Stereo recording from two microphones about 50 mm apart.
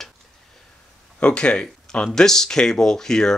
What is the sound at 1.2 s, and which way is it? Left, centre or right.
Speech, left.